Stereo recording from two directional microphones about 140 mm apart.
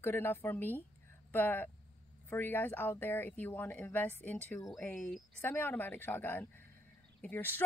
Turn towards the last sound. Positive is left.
turn(degrees=15)  # may be behind; listen again after turning